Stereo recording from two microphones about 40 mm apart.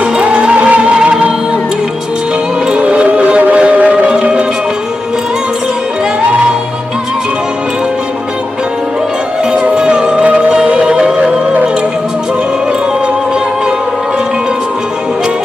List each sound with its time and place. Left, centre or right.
0.0 s music: right
2.7 s music: right
9.5 s music: right